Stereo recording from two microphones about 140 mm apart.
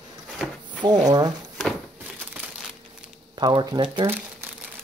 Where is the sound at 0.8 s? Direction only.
30° right (ahead or behind).